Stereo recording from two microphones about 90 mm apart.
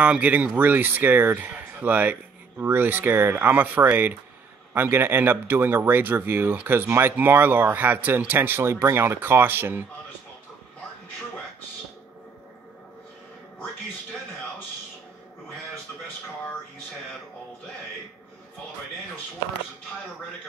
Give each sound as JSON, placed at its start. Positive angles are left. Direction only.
{"t": 0.0, "sound": "speech", "side_deg": -15}